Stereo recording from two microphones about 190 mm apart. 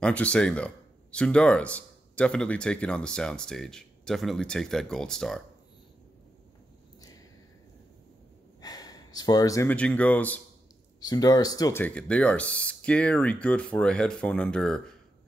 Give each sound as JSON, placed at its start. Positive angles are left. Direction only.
{"t": 0.0, "sound": "speech", "side_deg": 5}
{"t": 8.5, "sound": "speech", "side_deg": 20}
{"t": 11.0, "sound": "speech", "side_deg": 20}